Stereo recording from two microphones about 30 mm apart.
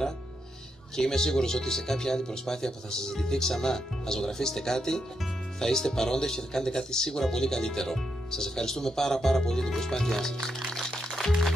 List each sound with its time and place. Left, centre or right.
0.9 s speech: centre
10.7 s music: left